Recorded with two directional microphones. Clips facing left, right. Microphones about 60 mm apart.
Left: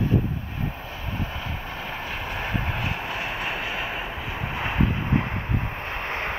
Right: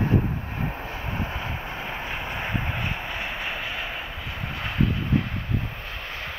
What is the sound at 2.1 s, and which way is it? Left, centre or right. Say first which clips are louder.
Vehicle: left 1 dB; centre.